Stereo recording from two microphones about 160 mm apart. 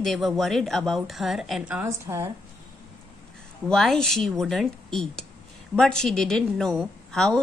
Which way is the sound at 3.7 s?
5° left (ahead or behind).